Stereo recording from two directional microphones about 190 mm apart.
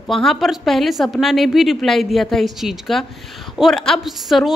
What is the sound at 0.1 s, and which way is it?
A woman's voice, centre (ahead or behind).